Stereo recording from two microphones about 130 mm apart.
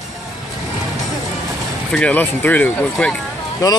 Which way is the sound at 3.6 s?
25° left (ahead or behind).